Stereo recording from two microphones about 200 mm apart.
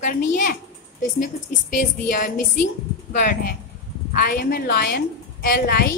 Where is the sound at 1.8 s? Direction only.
40° left (ahead or behind).